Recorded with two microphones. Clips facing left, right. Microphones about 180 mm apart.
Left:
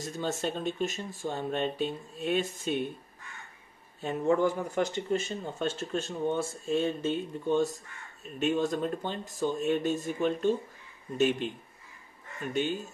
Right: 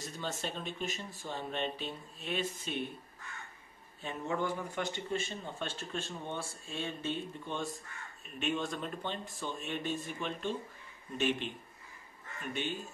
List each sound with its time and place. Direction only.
0.0 s speech: 45° left (ahead or behind)
4.0 s speech: 45° left (ahead or behind)